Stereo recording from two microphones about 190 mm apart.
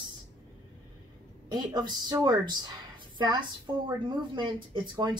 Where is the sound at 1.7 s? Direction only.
20° right (ahead or behind).